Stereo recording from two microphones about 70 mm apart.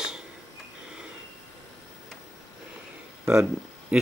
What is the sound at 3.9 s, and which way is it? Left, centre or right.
Speech, centre.